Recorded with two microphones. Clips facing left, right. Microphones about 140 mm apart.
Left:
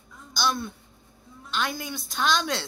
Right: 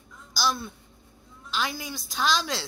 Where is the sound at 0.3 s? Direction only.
Centre (ahead or behind).